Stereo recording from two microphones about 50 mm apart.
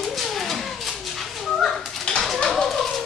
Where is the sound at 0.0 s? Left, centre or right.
Centre.